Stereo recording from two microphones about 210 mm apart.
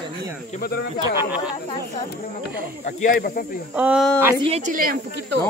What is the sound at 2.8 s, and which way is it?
Speech, 40° left (ahead or behind).